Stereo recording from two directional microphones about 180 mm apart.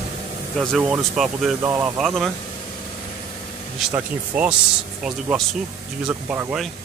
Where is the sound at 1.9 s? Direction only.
Centre (ahead or behind).